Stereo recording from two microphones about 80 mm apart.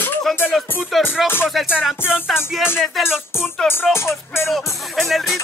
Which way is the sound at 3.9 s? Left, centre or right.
Left.